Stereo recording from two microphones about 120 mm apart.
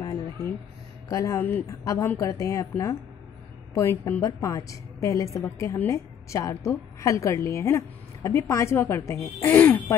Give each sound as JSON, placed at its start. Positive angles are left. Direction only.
{"t": 0.0, "sound": "a sound", "side_deg": 30}
{"t": 1.0, "sound": "a woman's voice", "side_deg": 25}
{"t": 3.7, "sound": "a woman's voice", "side_deg": 25}